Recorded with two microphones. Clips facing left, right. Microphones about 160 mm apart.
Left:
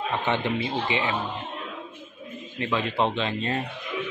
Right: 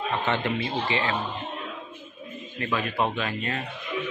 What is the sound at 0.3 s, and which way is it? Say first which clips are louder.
Speech: left 2 dB; 20° left (ahead or behind).